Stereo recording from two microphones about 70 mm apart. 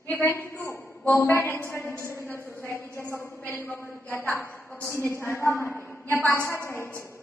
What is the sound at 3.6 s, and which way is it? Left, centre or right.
A woman's voice, left.